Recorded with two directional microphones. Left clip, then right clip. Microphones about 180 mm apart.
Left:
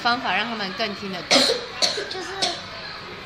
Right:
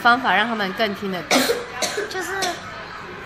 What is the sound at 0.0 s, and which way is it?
A woman's voice, 35° right (ahead or behind).